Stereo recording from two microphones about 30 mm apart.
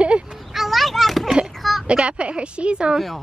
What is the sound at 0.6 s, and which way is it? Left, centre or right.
Children playing, centre.